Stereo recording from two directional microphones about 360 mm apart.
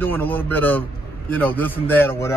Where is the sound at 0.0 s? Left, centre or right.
Centre.